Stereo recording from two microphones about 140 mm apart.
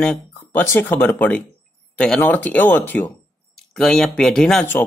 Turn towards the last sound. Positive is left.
turn(degrees=10)  # may be behind; listen again after turning